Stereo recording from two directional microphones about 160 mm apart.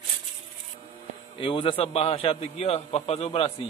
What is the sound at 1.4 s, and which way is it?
A man's voice, 35° left (ahead or behind).